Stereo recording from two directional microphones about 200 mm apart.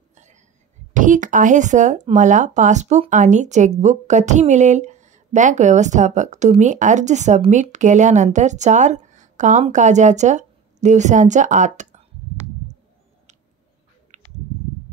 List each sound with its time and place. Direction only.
0.1 s whispering: 35° right (ahead or behind)
0.9 s speech: 40° right (ahead or behind)
14.1 s a sound: 35° right (ahead or behind)